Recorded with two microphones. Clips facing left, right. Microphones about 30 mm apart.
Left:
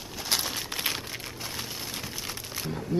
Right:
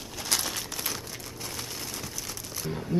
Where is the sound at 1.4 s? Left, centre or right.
Centre.